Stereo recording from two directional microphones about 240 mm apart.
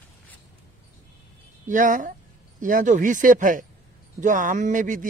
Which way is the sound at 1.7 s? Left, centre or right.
Right.